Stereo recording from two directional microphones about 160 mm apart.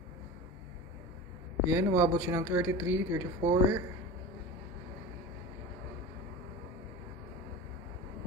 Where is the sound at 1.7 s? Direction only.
15° right (ahead or behind).